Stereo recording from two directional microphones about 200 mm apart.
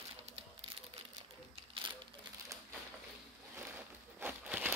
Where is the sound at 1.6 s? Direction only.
25° right (ahead or behind).